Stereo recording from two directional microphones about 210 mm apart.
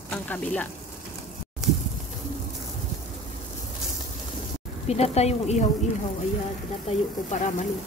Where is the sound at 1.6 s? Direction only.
Centre (ahead or behind).